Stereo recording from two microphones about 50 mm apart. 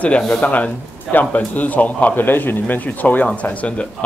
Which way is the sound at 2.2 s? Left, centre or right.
Left.